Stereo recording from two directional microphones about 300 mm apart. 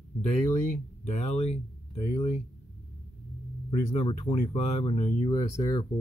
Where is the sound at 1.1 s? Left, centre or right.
Left.